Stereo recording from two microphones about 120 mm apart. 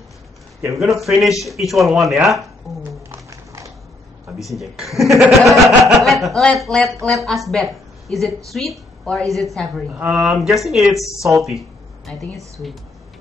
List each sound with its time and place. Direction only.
0.7 s speech: centre (ahead or behind)
3.1 s a sound: 25° right (ahead or behind)
4.5 s a woman's voice: centre (ahead or behind)